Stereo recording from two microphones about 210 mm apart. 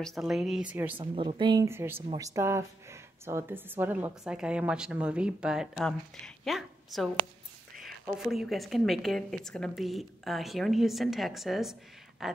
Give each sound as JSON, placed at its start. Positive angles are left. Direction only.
{"t": 0.0, "sound": "speech", "side_deg": 0}
{"t": 0.9, "sound": "speech", "side_deg": -25}